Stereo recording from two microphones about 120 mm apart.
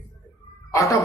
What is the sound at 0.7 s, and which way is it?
Speech, 25° left (ahead or behind).